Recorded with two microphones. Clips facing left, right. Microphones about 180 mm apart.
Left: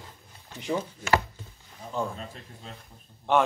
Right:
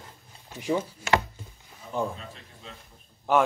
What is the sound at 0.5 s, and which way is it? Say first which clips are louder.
A man's voice: right 2 dB; 10° right (ahead or behind).